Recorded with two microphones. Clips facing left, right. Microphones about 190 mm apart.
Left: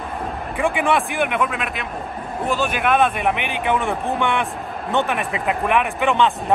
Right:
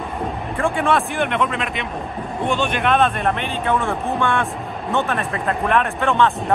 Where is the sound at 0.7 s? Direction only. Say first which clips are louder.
Even; 15° left (ahead or behind).